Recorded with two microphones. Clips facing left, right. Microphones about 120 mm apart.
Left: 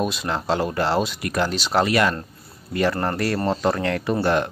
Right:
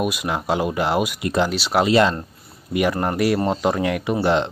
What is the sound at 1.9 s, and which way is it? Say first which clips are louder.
Speech: right 4 dB; 20° right (ahead or behind).